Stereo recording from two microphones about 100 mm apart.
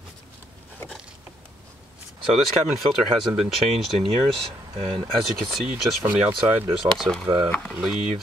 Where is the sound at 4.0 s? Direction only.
85° right.